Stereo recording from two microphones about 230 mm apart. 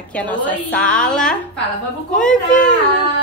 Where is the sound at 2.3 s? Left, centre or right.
Left.